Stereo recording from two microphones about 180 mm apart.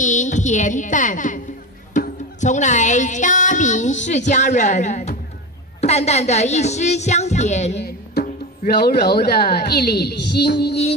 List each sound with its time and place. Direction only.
0.0 s music: 45° left (ahead or behind)
5.8 s a woman's voice: 35° left (ahead or behind)
7.7 s music: 65° left (ahead or behind)
8.8 s a woman's voice: 60° left (ahead or behind)